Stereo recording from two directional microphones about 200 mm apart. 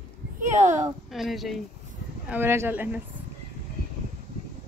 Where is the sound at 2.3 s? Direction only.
10° right (ahead or behind).